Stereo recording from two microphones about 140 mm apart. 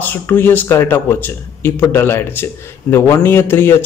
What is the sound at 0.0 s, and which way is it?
A man's voice, 15° left (ahead or behind).